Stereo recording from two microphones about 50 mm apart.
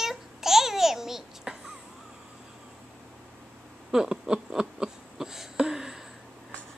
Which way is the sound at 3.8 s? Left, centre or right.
Centre.